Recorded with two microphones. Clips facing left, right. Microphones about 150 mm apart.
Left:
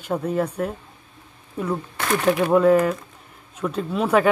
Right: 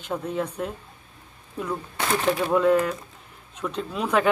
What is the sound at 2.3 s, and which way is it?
Speech, 10° left (ahead or behind).